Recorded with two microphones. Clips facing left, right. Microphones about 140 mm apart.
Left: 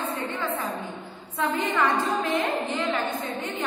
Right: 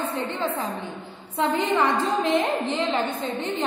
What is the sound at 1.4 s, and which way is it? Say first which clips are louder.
A woman's voice: right 3 dB; 20° right (ahead or behind).